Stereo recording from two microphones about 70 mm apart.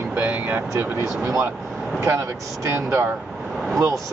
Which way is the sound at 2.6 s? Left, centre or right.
Right.